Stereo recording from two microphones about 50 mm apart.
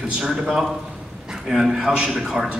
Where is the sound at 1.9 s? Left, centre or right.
Right.